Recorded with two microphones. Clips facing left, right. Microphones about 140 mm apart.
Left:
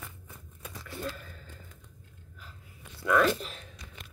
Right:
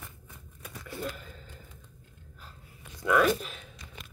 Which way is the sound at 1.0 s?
20° right (ahead or behind).